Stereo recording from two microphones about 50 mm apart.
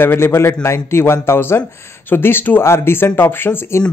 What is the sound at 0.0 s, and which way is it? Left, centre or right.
Speech, left.